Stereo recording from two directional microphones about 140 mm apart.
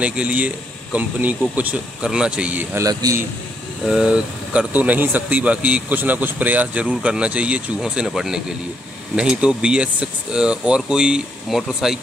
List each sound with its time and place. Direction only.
0.0 s speech: 10° right (ahead or behind)
2.8 s a man's voice: 25° right (ahead or behind)
3.8 s speech: 5° right (ahead or behind)